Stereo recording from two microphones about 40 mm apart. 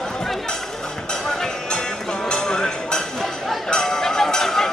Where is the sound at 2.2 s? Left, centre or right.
Centre.